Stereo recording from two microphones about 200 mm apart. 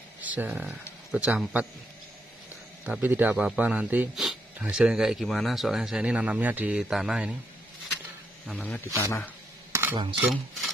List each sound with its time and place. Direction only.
0.2 s a man's voice: 10° right (ahead or behind)
2.8 s a man's voice: 10° right (ahead or behind)
8.5 s speech: 5° left (ahead or behind)
9.9 s cutlery: 20° right (ahead or behind)
10.3 s stir: centre (ahead or behind)